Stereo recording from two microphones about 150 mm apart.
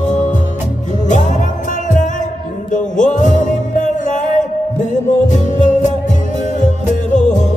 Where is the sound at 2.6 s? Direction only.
55° left (ahead or behind).